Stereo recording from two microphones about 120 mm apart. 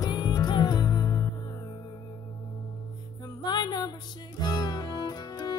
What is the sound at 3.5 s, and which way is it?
Music, 35° left (ahead or behind).